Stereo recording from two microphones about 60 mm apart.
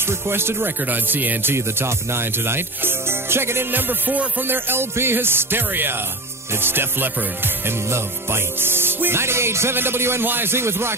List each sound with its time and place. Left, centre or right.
0.0 s speech: right
1.5 s speech: right
6.5 s music: right